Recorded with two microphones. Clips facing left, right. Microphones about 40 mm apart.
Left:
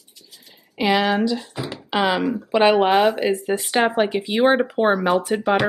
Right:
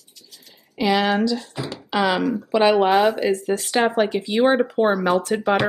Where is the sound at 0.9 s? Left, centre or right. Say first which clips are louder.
Even; centre.